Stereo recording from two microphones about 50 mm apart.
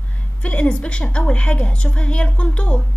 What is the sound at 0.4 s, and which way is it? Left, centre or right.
A woman's voice, left.